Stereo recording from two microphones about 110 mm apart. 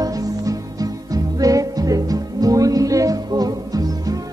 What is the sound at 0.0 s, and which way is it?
Music, 35° right (ahead or behind).